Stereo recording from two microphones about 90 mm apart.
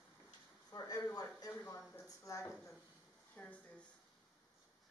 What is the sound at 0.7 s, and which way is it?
Speech, 40° left (ahead or behind).